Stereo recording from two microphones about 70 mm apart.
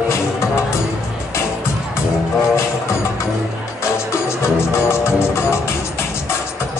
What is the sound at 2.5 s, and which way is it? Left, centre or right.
Music, left.